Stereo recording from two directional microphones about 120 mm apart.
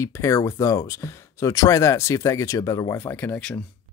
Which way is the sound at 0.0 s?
25° left (ahead or behind).